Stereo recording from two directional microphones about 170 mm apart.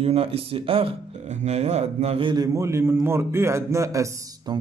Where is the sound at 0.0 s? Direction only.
35° right (ahead or behind).